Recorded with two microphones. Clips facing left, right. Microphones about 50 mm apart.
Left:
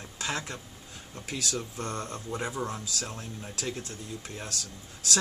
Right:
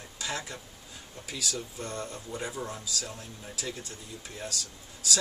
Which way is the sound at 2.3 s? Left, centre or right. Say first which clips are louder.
Left 3 dB; left.